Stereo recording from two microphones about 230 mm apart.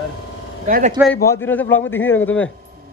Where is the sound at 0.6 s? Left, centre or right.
Right.